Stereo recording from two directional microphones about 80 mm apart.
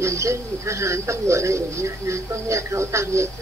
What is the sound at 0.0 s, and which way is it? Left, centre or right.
Speech, right.